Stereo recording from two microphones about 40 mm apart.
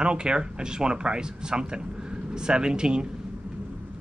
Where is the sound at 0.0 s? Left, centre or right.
Right.